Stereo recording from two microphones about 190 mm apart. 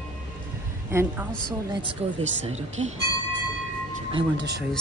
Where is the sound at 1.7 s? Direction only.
25° right (ahead or behind).